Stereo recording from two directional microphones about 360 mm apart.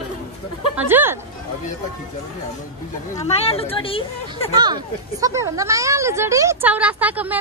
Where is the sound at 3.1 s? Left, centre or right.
Centre.